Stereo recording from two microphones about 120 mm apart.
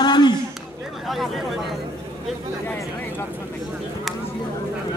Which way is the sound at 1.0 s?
Centre (ahead or behind).